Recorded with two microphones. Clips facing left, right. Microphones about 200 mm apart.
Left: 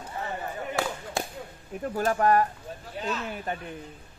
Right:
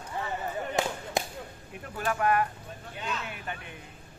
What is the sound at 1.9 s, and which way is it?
Speech, 40° left (ahead or behind).